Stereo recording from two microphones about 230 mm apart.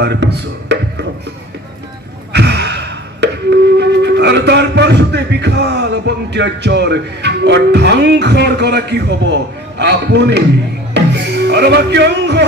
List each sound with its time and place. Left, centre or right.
0.0 s speech: right
2.3 s a sound: right
10.9 s music: right